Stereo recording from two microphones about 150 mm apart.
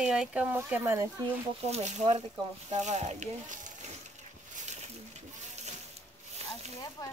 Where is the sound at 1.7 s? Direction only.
45° right (ahead or behind).